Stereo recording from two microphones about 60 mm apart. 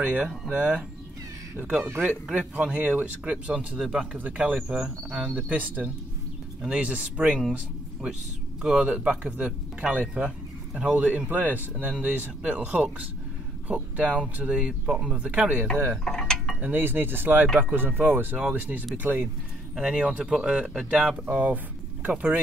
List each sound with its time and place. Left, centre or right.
0.0 s speech: right
1.9 s speech: right
2.3 s speech: centre
3.5 s speech: centre
4.1 s speech: right
4.6 s speech: centre
5.3 s speech: right
8.6 s speech: centre
15.1 s speech: right
16.0 s a sound: centre
16.6 s speech: right
19.7 s speech: centre
20.2 s speech: centre